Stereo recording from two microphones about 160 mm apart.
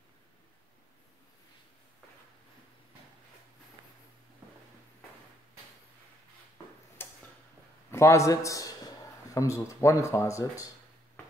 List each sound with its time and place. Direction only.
7.0 s tick-tock: 15° left (ahead or behind)
7.9 s a man's voice: 15° left (ahead or behind)